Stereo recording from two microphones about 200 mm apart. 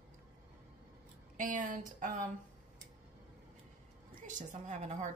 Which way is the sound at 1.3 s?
40° right (ahead or behind).